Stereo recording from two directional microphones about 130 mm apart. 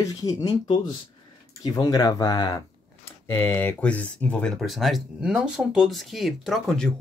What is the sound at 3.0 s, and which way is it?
Speech, 15° left (ahead or behind).